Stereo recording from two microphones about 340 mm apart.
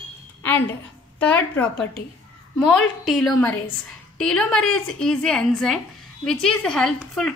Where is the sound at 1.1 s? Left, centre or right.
Centre.